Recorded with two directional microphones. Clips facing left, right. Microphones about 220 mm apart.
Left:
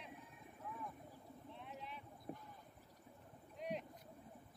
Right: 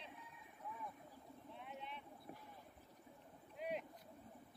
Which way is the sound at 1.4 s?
Centre (ahead or behind).